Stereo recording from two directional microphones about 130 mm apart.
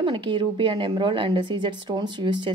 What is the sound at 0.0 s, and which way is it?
A woman's voice, 40° right (ahead or behind).